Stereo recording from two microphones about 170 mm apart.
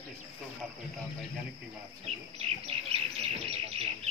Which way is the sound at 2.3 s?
35° right (ahead or behind).